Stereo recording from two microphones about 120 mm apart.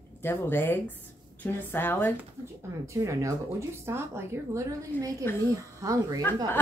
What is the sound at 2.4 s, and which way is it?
Speech, 25° right (ahead or behind).